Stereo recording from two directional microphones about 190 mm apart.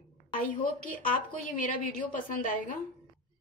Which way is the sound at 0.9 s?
45° left (ahead or behind).